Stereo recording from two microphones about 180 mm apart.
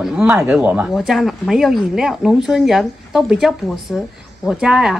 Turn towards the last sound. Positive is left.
turn(degrees=-5)  # may be behind; listen again after turning